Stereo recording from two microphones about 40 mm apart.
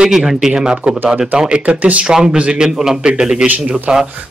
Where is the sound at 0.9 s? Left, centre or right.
Right.